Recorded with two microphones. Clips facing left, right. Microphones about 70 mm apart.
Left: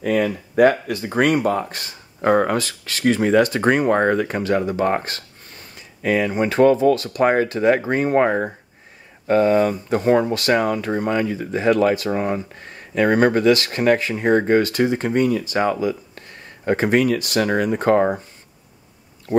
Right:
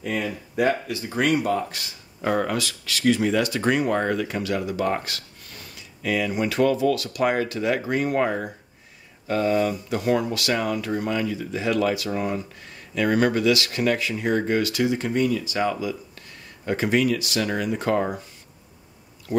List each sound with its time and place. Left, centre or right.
0.0 s speech: left